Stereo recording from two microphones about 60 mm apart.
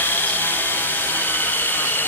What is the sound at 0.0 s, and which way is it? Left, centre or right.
Helicopter, left.